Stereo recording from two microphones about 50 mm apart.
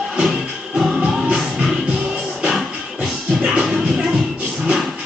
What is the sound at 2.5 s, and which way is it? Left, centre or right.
Music, centre.